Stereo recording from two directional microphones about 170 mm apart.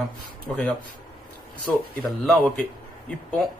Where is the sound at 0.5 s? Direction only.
5° left (ahead or behind).